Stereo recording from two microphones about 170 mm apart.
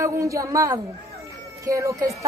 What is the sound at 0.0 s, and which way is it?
A woman's voice, 20° right (ahead or behind).